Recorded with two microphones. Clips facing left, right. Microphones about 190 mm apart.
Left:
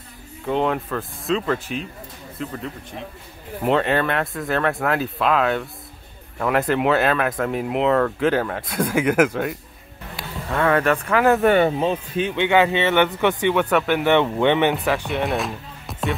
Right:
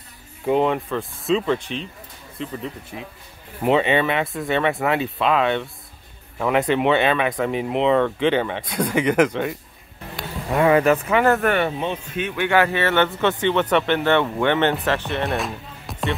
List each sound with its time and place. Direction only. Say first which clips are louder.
0.5 s speech: right 2 dB; centre (ahead or behind)
2.5 s speech: right 1 dB; 5° right (ahead or behind)
10.1 s speech: right 3 dB; 15° right (ahead or behind)
11.4 s speech: left 4 dB; 25° left (ahead or behind)
12.4 s speech: left 1 dB; 20° left (ahead or behind)
15.2 s music: left 1 dB; centre (ahead or behind)